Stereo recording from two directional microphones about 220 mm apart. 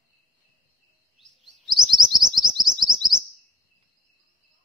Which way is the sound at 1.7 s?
20° right (ahead or behind).